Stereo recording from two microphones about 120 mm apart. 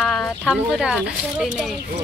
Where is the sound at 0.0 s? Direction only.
5° left (ahead or behind).